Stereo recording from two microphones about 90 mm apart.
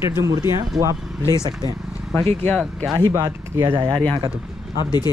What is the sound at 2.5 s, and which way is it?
Speech, centre (ahead or behind).